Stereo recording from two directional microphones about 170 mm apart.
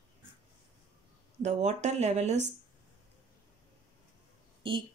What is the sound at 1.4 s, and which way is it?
Speech, 45° right (ahead or behind).